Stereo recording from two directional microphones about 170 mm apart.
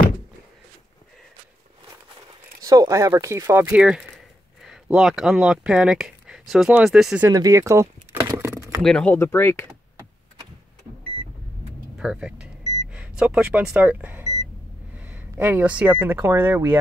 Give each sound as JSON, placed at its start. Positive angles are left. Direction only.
{"t": 2.6, "sound": "speech", "side_deg": -20}
{"t": 7.2, "sound": "a sound", "side_deg": -20}
{"t": 8.8, "sound": "speech", "side_deg": 5}
{"t": 12.0, "sound": "speech", "side_deg": -5}